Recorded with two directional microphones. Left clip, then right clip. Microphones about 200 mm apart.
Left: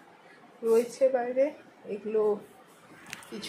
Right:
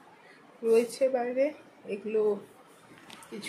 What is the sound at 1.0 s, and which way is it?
Speech, 15° right (ahead or behind).